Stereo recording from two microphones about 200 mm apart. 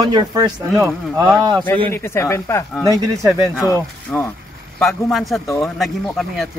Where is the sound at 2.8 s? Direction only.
15° right (ahead or behind).